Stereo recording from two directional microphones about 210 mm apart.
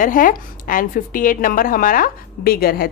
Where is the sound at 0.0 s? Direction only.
40° left (ahead or behind).